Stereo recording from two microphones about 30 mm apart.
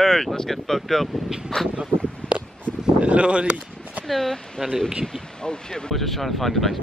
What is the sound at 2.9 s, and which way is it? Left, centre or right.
Speech, right.